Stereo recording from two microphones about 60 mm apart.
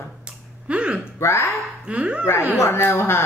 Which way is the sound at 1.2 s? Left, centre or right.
Left.